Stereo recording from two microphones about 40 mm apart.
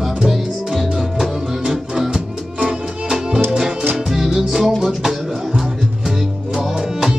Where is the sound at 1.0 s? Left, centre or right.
Centre.